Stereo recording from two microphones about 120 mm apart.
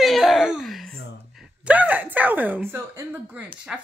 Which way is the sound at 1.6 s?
10° right (ahead or behind).